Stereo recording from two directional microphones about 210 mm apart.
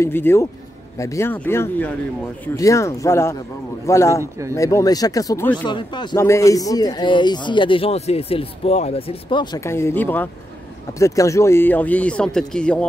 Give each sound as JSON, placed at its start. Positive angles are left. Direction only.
{"t": 0.0, "sound": "speech", "side_deg": 10}
{"t": 4.2, "sound": "speech", "side_deg": -15}
{"t": 4.6, "sound": "speech", "side_deg": 15}
{"t": 5.7, "sound": "speech", "side_deg": 20}